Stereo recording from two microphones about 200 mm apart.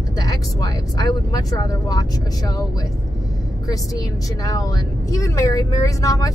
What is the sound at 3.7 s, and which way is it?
A woman's voice, 15° left (ahead or behind).